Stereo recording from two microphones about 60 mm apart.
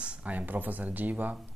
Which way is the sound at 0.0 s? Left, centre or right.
Right.